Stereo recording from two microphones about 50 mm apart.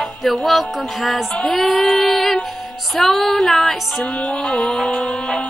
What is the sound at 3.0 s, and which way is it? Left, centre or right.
Music, centre.